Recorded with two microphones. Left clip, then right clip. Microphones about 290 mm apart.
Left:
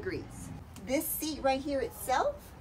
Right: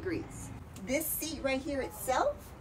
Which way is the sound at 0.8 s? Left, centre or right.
Centre.